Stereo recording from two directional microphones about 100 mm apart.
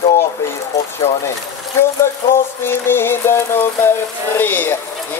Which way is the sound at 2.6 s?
20° left (ahead or behind).